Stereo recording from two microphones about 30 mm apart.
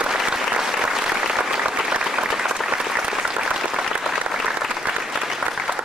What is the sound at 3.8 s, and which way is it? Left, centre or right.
Applause, centre.